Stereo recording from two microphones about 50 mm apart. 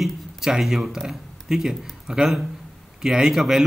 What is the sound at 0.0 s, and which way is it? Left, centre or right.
A man's voice, centre.